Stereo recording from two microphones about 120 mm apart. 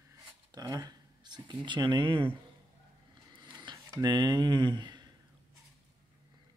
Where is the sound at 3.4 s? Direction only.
40° right (ahead or behind).